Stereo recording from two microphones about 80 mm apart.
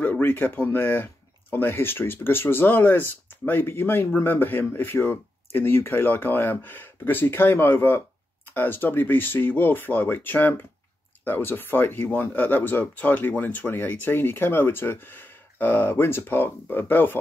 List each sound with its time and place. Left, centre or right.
0.0 s speech: left